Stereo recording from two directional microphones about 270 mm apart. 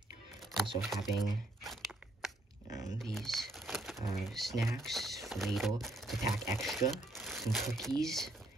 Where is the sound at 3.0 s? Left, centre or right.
Centre.